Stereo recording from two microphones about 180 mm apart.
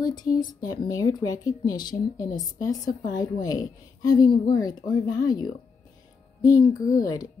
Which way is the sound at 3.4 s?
20° left (ahead or behind).